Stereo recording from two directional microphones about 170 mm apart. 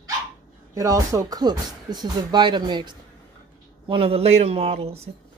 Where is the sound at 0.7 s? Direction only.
20° right (ahead or behind).